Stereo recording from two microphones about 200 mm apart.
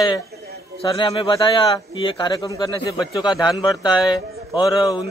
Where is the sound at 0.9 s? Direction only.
25° left (ahead or behind).